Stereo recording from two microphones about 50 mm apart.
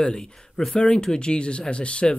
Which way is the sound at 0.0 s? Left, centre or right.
Centre.